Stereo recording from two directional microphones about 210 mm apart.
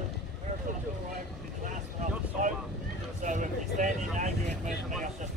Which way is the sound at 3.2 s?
35° right (ahead or behind).